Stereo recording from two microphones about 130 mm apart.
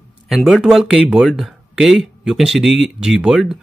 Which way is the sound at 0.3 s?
Centre (ahead or behind).